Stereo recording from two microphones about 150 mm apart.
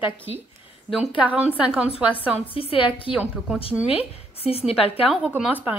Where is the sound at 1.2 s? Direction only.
10° right (ahead or behind).